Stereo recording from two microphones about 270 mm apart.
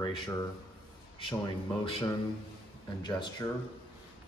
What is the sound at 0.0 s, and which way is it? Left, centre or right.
Speech, centre.